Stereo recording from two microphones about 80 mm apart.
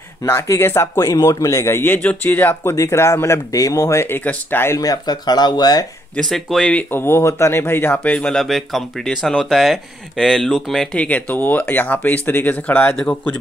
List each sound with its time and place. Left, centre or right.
0.2 s speech: left
0.9 s speech: left
1.7 s speech: left
2.7 s speech: left
4.2 s speech: left
4.7 s speech: left
6.1 s speech: centre
6.8 s speech: left
8.0 s speech: centre
8.3 s speech: centre
11.1 s speech: centre